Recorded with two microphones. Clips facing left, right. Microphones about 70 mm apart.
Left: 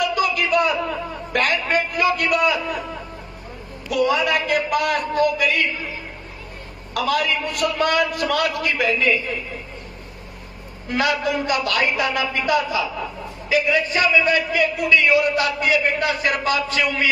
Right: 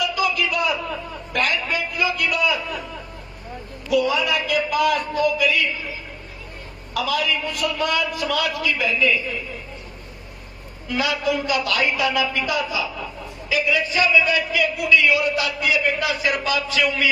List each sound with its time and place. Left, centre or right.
0.0 s a sound: left
3.9 s a man's voice: left
6.9 s a man's voice: left
10.9 s a man's voice: left